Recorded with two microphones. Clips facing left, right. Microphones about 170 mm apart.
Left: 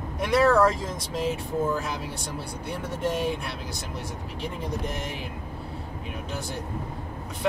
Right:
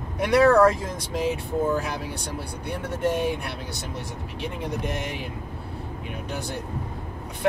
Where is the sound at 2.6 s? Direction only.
60° right (ahead or behind).